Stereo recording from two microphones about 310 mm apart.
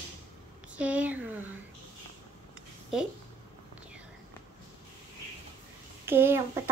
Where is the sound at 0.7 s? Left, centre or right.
Centre.